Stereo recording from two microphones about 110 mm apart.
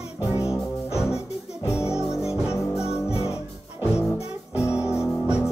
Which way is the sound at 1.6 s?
25° left (ahead or behind).